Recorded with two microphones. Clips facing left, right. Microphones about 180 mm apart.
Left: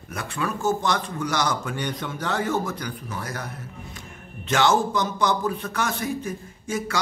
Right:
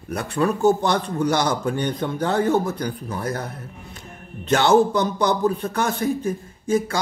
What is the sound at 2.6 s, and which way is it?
Speech, 30° right (ahead or behind).